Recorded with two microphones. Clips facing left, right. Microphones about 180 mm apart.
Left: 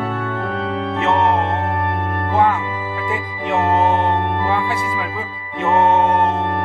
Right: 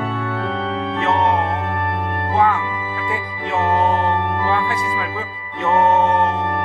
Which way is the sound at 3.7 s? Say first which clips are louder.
Left 1 dB; 20° left (ahead or behind).